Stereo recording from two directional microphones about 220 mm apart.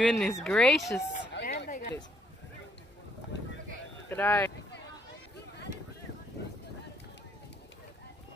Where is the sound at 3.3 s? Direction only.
55° left (ahead or behind).